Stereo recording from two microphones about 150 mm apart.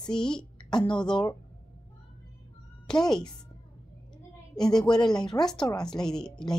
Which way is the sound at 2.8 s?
5° left (ahead or behind).